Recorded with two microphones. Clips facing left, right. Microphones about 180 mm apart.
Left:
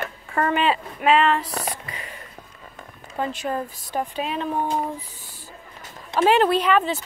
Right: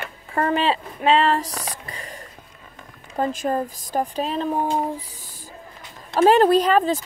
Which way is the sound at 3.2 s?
45° right (ahead or behind).